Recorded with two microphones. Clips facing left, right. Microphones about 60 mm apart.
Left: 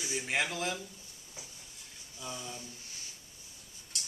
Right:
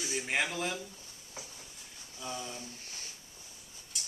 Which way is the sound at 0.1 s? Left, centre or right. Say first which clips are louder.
Even; centre.